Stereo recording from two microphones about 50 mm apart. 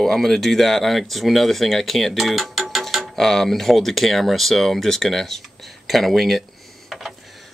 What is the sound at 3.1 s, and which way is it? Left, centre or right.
Speech, centre.